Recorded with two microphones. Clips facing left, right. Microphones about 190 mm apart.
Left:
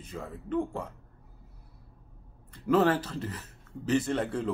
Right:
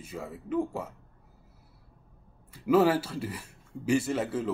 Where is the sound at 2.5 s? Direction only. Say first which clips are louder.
Right 2 dB; 10° right (ahead or behind).